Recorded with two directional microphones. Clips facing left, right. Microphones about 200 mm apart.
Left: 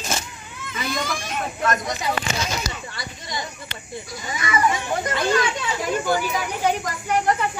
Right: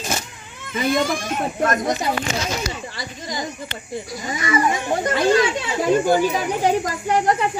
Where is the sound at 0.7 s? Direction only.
50° right (ahead or behind).